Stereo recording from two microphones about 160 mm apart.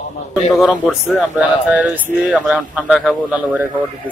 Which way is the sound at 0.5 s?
Centre (ahead or behind).